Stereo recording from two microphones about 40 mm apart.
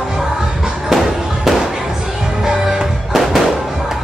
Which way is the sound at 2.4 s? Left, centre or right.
Centre.